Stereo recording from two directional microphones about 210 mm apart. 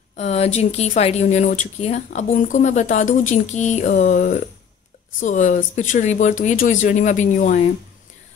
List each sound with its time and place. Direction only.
0.1 s speech: 30° left (ahead or behind)